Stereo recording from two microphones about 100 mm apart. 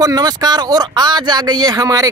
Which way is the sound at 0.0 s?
40° right (ahead or behind).